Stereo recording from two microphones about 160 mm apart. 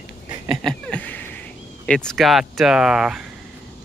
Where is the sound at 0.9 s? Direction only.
10° left (ahead or behind).